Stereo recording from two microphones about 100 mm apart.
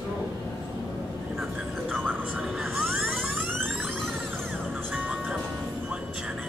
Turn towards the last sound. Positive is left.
turn(degrees=-10)  # may be behind; listen again after turning